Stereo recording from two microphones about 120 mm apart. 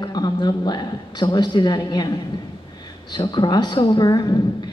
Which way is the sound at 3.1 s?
40° left (ahead or behind).